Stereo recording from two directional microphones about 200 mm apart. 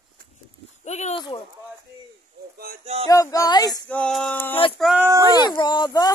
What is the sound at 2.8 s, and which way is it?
Music, 30° right (ahead or behind).